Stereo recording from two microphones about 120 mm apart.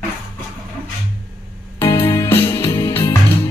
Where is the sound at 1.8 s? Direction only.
20° left (ahead or behind).